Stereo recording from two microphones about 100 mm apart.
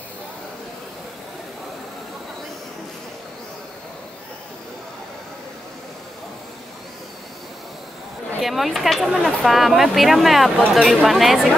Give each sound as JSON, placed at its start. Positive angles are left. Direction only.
{"t": 8.4, "sound": "speech", "side_deg": 0}